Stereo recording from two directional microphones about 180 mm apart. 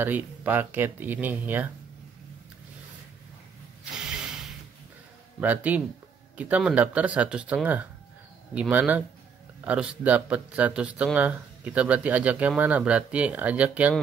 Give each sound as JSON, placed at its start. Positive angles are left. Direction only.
{"t": 0.0, "sound": "speech", "side_deg": -10}
{"t": 4.0, "sound": "a sound", "side_deg": -5}
{"t": 5.4, "sound": "speech", "side_deg": -10}